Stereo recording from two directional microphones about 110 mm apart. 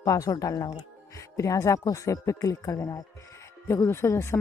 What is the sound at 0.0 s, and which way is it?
Speech, 30° left (ahead or behind).